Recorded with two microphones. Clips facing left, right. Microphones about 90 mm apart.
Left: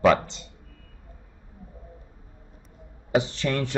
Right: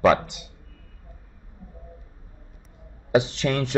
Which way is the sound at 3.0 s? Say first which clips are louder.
Right 3 dB; 20° right (ahead or behind).